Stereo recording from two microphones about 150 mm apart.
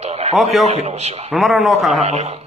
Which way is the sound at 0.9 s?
45° right (ahead or behind).